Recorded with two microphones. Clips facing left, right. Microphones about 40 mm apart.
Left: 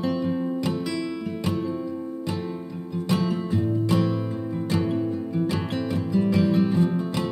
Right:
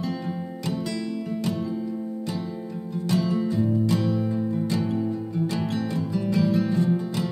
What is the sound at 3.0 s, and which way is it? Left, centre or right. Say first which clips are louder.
Music: right 1 dB; left.